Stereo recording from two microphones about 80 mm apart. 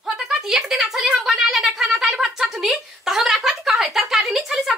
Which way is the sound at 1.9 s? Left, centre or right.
Centre.